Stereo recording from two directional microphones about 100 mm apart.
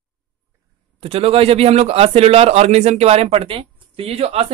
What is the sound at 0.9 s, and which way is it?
A man's voice, 75° right (ahead or behind).